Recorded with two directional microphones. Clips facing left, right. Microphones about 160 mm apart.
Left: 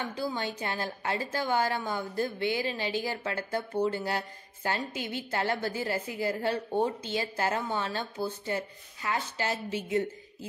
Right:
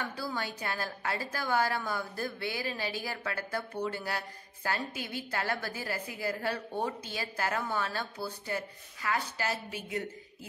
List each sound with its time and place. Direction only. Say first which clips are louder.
0.0 s a woman's voice: left 3 dB; 20° left (ahead or behind)